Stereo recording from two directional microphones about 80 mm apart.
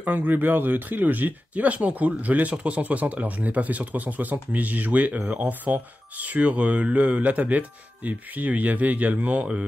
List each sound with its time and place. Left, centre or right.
0.0 s speech: right